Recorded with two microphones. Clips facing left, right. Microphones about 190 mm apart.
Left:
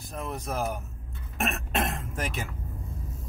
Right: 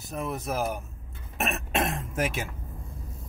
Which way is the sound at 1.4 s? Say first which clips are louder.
Right 1 dB; centre (ahead or behind).